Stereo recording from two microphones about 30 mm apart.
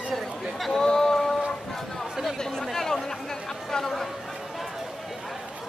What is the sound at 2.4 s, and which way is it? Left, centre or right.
Chatter, centre.